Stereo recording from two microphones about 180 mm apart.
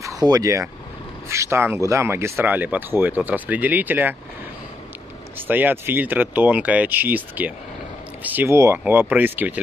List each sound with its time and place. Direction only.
0.0 s speech: 20° right (ahead or behind)
5.5 s speech: 10° right (ahead or behind)